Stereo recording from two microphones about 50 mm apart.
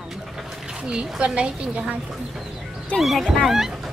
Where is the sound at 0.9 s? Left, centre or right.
Centre.